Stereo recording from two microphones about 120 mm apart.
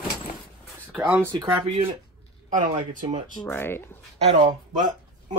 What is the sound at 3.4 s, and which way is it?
Speech, 20° left (ahead or behind).